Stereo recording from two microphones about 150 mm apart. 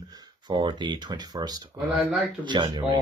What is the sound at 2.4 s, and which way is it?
Speech, 30° right (ahead or behind).